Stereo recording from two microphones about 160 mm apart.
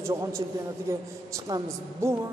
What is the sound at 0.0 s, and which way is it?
Speech, 20° right (ahead or behind).